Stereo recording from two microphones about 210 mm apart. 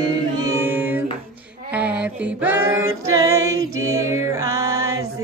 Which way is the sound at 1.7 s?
5° right (ahead or behind).